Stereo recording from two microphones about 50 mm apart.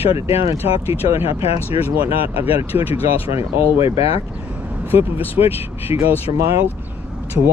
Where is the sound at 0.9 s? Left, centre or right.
Right.